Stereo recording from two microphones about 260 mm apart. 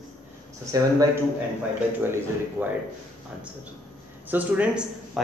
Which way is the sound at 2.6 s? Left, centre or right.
Centre.